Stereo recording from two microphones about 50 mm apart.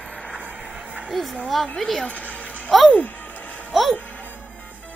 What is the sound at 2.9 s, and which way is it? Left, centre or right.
Music, left.